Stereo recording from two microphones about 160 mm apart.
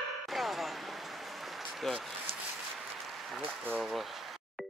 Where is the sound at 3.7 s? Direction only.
Centre (ahead or behind).